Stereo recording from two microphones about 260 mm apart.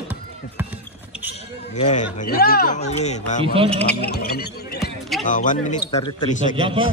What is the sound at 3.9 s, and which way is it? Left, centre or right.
Speech, left.